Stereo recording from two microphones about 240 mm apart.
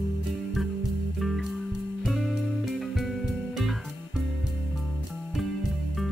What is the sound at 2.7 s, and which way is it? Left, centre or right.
Music, centre.